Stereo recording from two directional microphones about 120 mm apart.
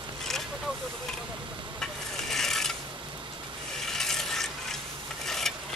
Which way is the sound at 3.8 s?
5° left (ahead or behind).